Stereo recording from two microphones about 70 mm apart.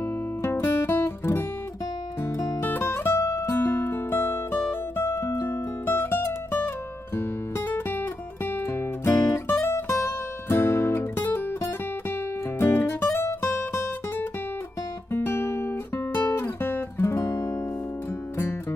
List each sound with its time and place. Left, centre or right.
0.4 s music: left
2.6 s music: left
12.6 s music: left
15.1 s guitar: left